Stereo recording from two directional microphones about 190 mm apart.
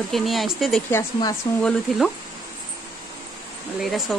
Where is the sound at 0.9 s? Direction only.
15° left (ahead or behind).